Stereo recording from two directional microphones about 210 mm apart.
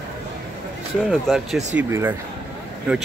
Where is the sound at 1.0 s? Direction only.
Centre (ahead or behind).